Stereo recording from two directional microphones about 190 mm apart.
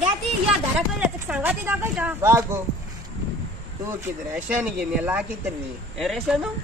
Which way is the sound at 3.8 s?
10° right (ahead or behind).